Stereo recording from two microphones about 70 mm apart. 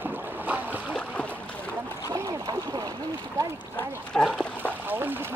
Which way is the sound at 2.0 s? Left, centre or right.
Right.